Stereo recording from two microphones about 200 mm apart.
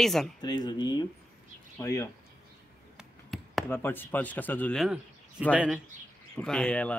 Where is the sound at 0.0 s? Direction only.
Centre (ahead or behind).